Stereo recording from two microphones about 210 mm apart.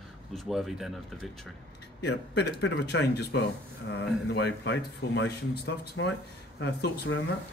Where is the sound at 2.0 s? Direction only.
55° left (ahead or behind).